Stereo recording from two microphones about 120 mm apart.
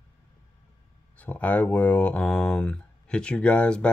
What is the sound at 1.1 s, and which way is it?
Speech, 10° left (ahead or behind).